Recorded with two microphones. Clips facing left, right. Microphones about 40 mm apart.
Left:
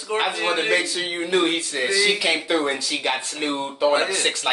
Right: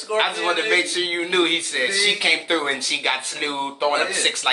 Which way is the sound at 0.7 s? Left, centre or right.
Right.